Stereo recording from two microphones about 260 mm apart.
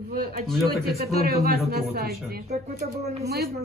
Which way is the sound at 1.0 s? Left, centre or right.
Right.